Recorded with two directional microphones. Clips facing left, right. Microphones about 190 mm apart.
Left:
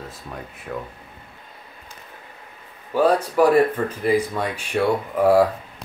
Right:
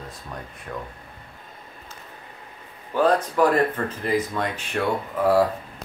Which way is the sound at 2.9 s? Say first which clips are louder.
Left 2 dB; 10° left (ahead or behind).